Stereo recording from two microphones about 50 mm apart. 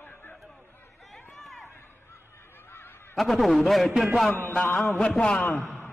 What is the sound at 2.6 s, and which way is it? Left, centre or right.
Honk, left.